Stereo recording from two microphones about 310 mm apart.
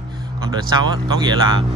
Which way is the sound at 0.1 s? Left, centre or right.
Centre.